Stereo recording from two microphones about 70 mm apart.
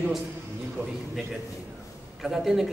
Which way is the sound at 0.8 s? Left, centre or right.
Right.